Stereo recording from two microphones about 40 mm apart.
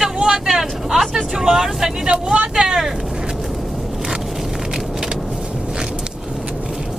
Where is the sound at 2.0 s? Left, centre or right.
Right.